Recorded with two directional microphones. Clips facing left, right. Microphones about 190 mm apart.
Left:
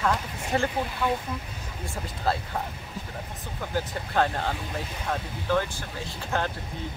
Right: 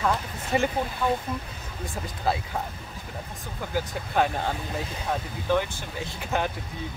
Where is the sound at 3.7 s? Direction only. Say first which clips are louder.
Right 1 dB; 10° right (ahead or behind).